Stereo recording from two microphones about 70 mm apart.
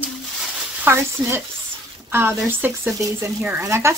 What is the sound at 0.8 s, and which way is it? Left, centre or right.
Speech, right.